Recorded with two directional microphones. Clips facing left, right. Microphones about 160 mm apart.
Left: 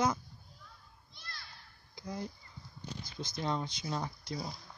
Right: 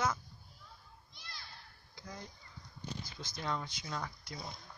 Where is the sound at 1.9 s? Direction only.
15° left (ahead or behind).